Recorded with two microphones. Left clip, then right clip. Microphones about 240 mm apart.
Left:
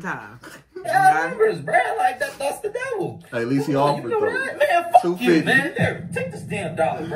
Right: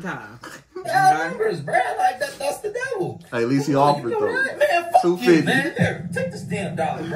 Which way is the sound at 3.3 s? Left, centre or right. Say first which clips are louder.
Right 2 dB; centre.